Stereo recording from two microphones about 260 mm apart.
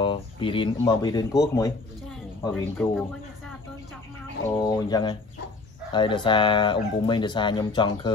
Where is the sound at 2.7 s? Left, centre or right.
Centre.